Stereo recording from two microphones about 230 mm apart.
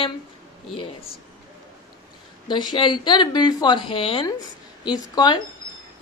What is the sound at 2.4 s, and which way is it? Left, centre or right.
A woman's voice, centre.